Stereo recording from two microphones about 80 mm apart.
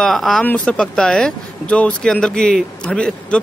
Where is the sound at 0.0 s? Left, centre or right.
Centre.